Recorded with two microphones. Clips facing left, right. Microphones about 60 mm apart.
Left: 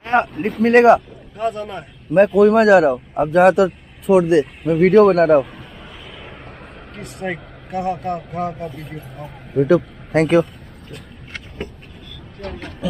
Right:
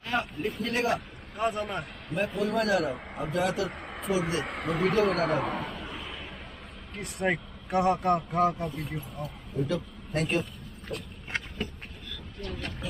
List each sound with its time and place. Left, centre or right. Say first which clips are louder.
0.0 s a man's voice: left 12 dB; left
1.4 s speech: left 6 dB; centre
2.1 s a man's voice: left 16 dB; left
4.5 s speech: left 12 dB; right
4.9 s a man's voice: left 16 dB; left
5.4 s a sound: left 4 dB; right
7.2 s speech: left 2 dB; centre
9.1 s speech: left 12 dB; left
12.4 s vehicle: left 7 dB; left